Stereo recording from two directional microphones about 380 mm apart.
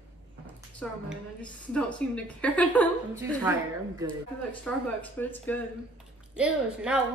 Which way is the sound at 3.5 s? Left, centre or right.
Centre.